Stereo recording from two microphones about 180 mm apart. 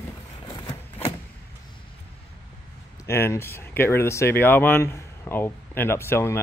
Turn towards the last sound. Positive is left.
turn(degrees=15)  # may be behind; listen again after turning